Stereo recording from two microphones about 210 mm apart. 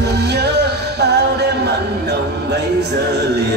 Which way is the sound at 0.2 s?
50° right (ahead or behind).